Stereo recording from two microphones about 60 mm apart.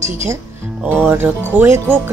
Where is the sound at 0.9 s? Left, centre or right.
Right.